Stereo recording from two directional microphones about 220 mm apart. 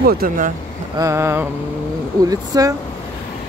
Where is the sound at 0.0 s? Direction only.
45° right (ahead or behind).